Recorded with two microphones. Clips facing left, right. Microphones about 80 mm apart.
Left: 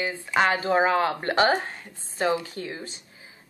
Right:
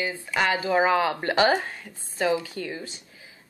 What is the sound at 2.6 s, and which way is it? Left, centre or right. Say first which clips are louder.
Speech: right 1 dB; left.